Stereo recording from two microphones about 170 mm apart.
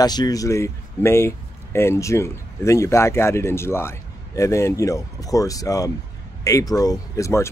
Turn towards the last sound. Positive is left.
turn(degrees=15)  # may be behind; listen again after turning